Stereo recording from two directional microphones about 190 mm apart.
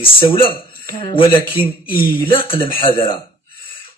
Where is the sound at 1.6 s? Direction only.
10° right (ahead or behind).